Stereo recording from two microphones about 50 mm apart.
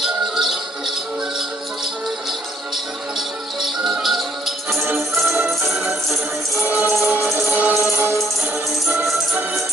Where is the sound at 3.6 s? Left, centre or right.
Centre.